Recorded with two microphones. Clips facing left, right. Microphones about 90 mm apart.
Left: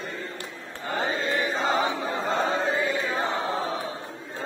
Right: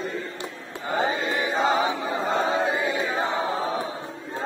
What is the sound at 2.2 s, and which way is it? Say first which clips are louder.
Choir: right 2 dB; 10° right (ahead or behind).